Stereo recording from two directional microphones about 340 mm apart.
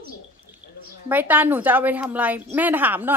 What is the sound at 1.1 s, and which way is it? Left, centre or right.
A woman's voice, centre.